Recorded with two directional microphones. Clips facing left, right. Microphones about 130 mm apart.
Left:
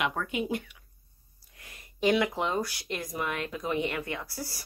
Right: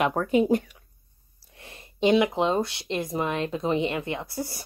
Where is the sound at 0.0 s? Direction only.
35° right (ahead or behind).